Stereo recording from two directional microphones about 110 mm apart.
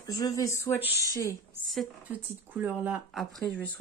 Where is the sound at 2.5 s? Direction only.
10° right (ahead or behind).